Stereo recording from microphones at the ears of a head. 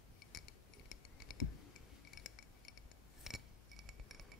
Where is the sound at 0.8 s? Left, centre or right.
Left.